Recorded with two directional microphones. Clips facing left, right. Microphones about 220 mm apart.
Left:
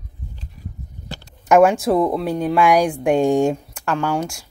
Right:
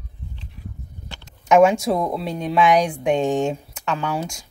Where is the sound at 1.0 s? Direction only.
40° left (ahead or behind).